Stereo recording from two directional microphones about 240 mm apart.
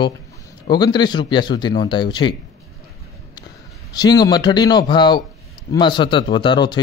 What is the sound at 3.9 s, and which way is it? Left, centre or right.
A man's voice, centre.